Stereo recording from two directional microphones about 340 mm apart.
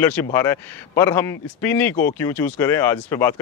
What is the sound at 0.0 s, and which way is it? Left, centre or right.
Speech, centre.